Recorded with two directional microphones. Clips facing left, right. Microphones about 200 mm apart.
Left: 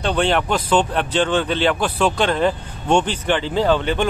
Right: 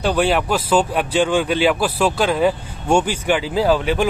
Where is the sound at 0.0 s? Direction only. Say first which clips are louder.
Right 1 dB; 5° right (ahead or behind).